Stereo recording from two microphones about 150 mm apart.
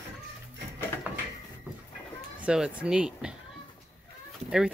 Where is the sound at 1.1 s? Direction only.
15° right (ahead or behind).